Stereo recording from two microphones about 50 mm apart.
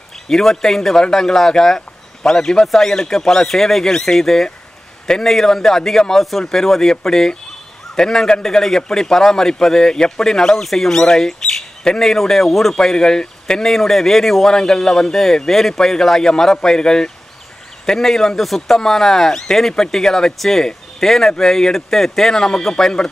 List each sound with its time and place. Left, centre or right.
0.3 s a man's voice: centre